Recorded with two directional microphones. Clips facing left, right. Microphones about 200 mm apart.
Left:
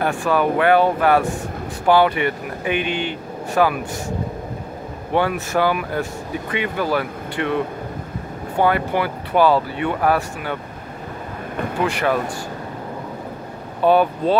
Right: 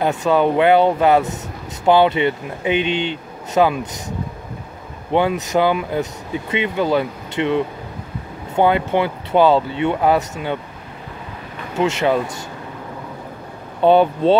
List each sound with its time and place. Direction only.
0.0 s speech: 20° right (ahead or behind)
5.1 s speech: 20° right (ahead or behind)
8.5 s speech: 20° right (ahead or behind)
11.7 s speech: 25° right (ahead or behind)
13.8 s speech: 25° right (ahead or behind)